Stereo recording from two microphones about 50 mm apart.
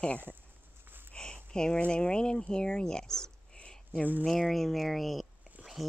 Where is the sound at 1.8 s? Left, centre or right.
Centre.